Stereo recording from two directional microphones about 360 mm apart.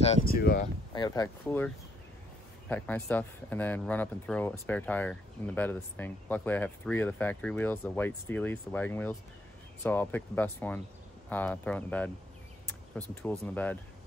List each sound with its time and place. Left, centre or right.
0.0 s speech: left
0.9 s speech: centre
2.7 s speech: centre